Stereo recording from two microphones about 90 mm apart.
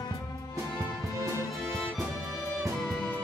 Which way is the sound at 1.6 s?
Centre (ahead or behind).